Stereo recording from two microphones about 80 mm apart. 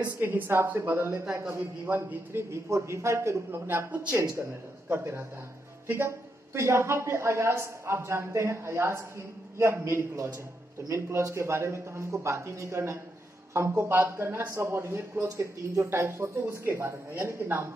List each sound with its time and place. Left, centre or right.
0.2 s a woman's voice: right